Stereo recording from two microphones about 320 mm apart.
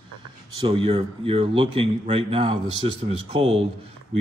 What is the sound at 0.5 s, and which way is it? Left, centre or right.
Speech, centre.